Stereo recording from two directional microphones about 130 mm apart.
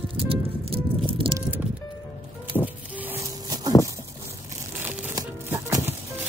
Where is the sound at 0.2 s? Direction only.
45° right (ahead or behind).